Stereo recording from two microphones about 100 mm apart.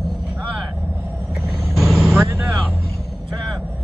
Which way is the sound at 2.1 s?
25° right (ahead or behind).